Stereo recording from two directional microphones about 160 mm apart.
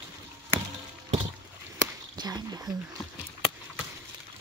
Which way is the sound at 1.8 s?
25° right (ahead or behind).